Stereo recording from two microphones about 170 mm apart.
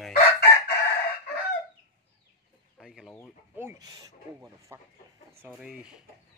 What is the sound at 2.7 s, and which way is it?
Speech, 5° right (ahead or behind).